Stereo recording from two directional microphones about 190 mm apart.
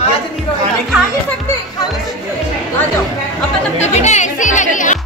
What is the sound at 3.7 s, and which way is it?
Speech, 35° left (ahead or behind).